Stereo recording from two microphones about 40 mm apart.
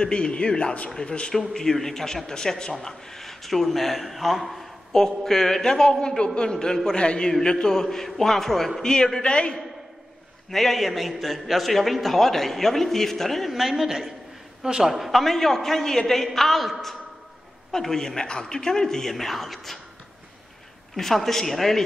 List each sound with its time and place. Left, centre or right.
0.0 s a man's voice: left
1.5 s a man's voice: centre
4.9 s a man's voice: centre
7.7 s a man's voice: centre
8.8 s a man's voice: centre
10.5 s a man's voice: centre
13.5 s a woman's voice: centre
15.0 s a man's voice: centre
20.9 s a man's voice: centre